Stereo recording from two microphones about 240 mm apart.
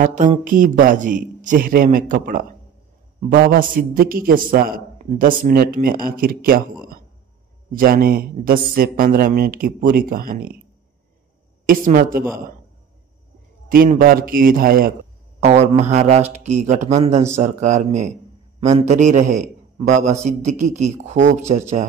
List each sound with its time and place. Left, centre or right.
0.0 s a man's voice: right
11.6 s a man's voice: right
13.7 s a man's voice: right
15.4 s a man's voice: right